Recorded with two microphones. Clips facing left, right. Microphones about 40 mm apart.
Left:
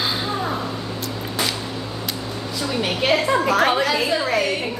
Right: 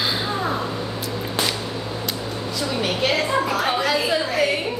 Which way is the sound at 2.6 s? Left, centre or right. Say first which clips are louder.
Even; centre.